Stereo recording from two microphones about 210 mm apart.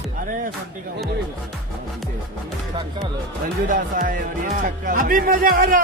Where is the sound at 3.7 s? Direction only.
40° right (ahead or behind).